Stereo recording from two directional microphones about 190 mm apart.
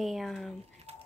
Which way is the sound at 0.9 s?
35° right (ahead or behind).